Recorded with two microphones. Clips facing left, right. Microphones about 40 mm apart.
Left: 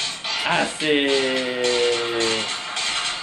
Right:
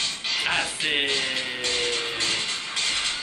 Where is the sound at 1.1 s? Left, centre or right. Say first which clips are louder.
Left 6 dB; left.